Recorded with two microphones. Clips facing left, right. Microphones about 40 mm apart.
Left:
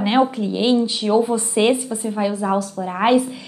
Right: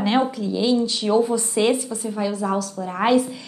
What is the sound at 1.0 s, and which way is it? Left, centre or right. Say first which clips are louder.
Speech: left 1 dB; centre.